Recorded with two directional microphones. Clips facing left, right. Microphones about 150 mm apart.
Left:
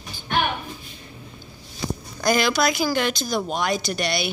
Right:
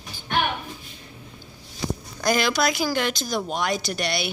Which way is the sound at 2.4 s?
10° left (ahead or behind).